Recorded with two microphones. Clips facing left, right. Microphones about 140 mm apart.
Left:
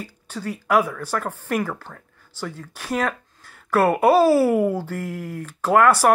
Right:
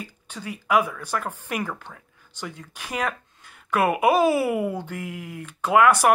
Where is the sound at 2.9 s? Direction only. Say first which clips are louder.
Left 4 dB; 10° right (ahead or behind).